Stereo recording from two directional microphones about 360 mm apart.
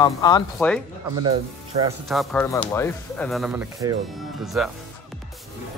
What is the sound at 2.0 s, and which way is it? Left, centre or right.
Speech, centre.